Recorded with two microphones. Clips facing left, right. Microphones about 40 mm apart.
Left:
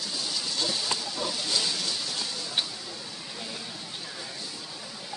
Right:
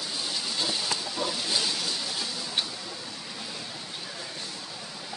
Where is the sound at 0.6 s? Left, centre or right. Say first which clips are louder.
Even; centre.